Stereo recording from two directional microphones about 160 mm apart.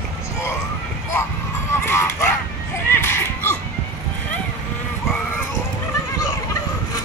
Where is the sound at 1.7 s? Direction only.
15° left (ahead or behind).